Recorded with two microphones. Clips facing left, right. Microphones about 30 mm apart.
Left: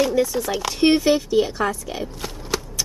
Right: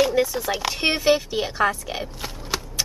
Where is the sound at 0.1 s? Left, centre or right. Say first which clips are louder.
Left 1 dB; centre.